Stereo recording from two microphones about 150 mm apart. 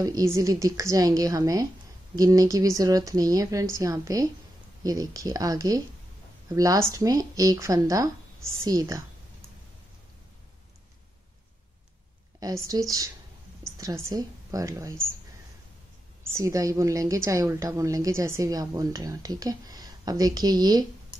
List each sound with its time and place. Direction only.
0.0 s a woman's voice: 20° right (ahead or behind)
12.6 s a woman's voice: 25° right (ahead or behind)
16.3 s a woman's voice: 20° right (ahead or behind)